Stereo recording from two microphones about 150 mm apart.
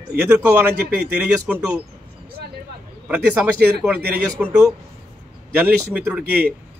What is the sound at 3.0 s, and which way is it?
A man's voice, 10° right (ahead or behind).